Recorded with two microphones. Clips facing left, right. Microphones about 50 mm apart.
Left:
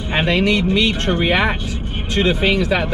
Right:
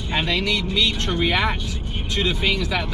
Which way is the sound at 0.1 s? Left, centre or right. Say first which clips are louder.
Left 6 dB; left.